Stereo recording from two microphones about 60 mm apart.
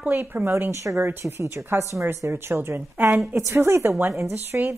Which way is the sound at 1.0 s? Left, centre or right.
Right.